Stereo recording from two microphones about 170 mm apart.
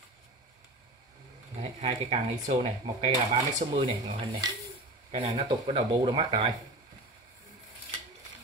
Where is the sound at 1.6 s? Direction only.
40° right (ahead or behind).